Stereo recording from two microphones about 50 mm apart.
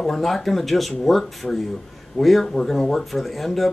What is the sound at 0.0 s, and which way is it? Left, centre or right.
Speech, centre.